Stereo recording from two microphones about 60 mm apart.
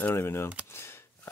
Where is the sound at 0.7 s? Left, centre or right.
Left.